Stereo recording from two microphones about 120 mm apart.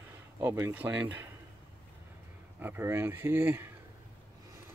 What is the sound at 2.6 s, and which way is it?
Speech, 20° right (ahead or behind).